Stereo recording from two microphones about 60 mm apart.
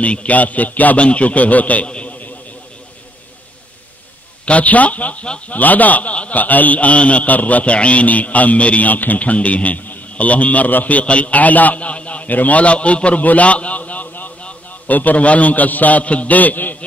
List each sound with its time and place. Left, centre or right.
0.0 s a man's voice: left
4.5 s a man's voice: left